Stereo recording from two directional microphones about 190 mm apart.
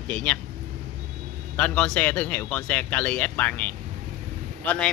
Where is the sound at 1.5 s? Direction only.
5° left (ahead or behind).